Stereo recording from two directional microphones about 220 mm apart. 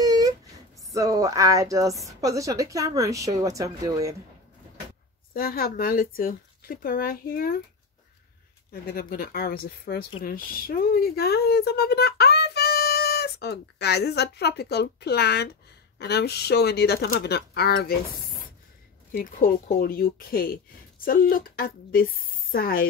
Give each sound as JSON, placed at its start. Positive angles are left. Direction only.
{"t": 0.0, "sound": "a sound", "side_deg": -15}
{"t": 0.9, "sound": "speech", "side_deg": -15}
{"t": 5.3, "sound": "speech", "side_deg": 40}
{"t": 8.8, "sound": "speech", "side_deg": 40}
{"t": 19.1, "sound": "speech", "side_deg": 45}